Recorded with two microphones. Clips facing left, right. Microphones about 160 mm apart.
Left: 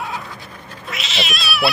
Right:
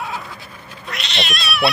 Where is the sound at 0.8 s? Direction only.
Centre (ahead or behind).